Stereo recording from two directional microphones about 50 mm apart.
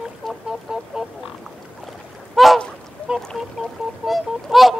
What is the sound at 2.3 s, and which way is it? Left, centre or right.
Goose, centre.